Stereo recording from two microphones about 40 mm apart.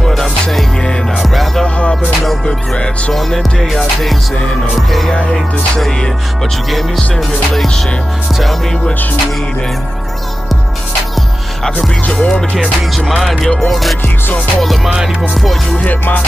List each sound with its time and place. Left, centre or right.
0.0 s music: centre
2.4 s music: centre
3.2 s music: centre
12.1 s music: left
12.5 s music: centre
15.8 s music: left